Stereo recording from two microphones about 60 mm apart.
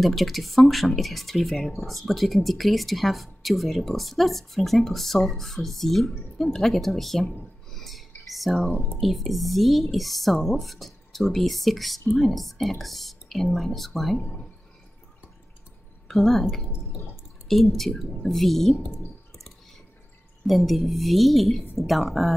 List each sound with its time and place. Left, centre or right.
0.0 s speech: centre
7.7 s a sound: centre
9.0 s speech: centre
14.2 s speech: centre
16.1 s speech: centre
18.9 s clicking: centre
20.4 s speech: centre